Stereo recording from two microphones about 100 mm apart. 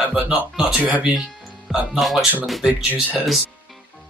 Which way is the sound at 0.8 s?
15° right (ahead or behind).